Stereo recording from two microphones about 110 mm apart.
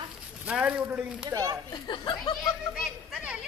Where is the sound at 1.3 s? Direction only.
30° right (ahead or behind).